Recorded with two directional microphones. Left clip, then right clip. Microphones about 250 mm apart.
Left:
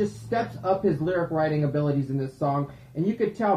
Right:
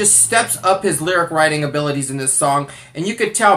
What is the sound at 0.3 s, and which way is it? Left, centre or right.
Speech, centre.